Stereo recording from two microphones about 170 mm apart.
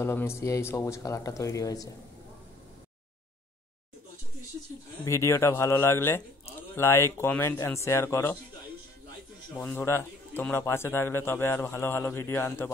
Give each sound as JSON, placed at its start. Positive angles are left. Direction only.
{"t": 0.0, "sound": "speech", "side_deg": 15}
{"t": 5.0, "sound": "speech", "side_deg": 15}
{"t": 9.6, "sound": "speech", "side_deg": 10}